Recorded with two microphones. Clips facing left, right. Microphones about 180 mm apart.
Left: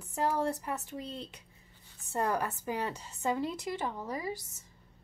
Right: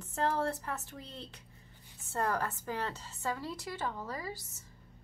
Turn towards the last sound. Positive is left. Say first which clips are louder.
# left 3 dB
turn(degrees=15)  # may be behind; listen again after turning